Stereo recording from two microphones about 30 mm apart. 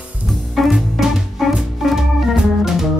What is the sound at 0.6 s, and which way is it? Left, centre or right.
Music, centre.